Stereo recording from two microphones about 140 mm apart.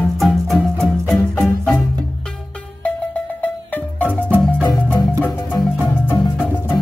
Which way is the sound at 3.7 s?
10° left (ahead or behind).